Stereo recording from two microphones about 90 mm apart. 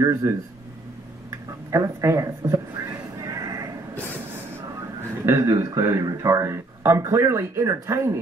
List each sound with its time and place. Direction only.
0.0 s speech: 35° right (ahead or behind)
1.7 s a sound: 40° right (ahead or behind)
5.2 s speech: 30° right (ahead or behind)